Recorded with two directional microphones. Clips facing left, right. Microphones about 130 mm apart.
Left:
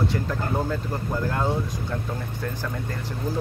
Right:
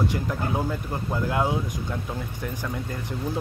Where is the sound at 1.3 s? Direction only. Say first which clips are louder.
Right 2 dB; 10° right (ahead or behind).